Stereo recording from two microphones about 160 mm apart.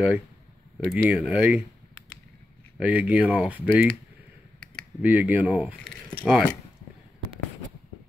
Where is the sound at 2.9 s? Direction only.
10° right (ahead or behind).